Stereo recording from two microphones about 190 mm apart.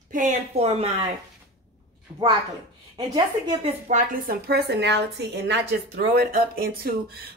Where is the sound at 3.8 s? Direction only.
40° right (ahead or behind).